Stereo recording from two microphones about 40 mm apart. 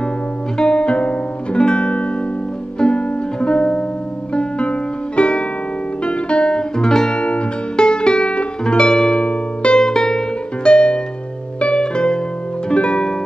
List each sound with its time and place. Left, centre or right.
0.6 s music: left
7.2 s music: left
9.2 s music: left
9.8 s music: centre